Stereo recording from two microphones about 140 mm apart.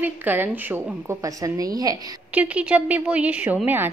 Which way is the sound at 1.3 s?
25° right (ahead or behind).